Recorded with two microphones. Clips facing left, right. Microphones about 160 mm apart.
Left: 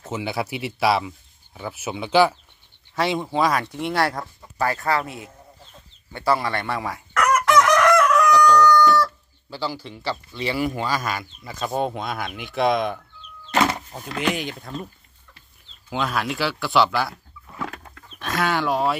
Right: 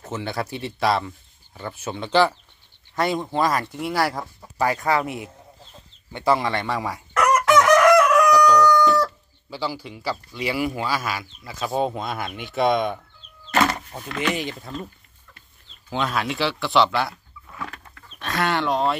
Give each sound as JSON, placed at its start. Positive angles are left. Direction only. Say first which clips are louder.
{"t": 0.1, "sound": "speech", "louder": "left 1 dB", "side_deg": 10}
{"t": 4.6, "sound": "speech", "louder": "right 1 dB", "side_deg": -15}
{"t": 7.4, "sound": "crowing", "louder": "right 3 dB", "side_deg": -5}
{"t": 9.6, "sound": "speech", "louder": "even", "side_deg": -5}
{"t": 13.5, "sound": "a sound", "louder": "even", "side_deg": 20}
{"t": 14.1, "sound": "speech", "louder": "even", "side_deg": 0}
{"t": 15.9, "sound": "speech", "louder": "even", "side_deg": 0}
{"t": 18.2, "sound": "speech", "louder": "even", "side_deg": 0}